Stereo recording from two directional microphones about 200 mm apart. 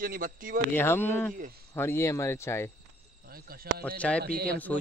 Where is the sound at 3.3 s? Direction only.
45° right (ahead or behind).